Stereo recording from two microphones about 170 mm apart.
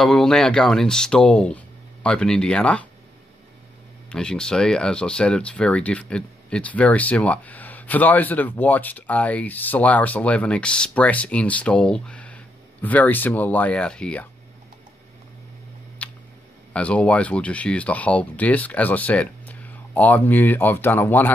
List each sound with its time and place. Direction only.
0.0 s speech: centre (ahead or behind)
4.1 s speech: 5° left (ahead or behind)
16.0 s tick: 10° left (ahead or behind)
16.7 s speech: 5° left (ahead or behind)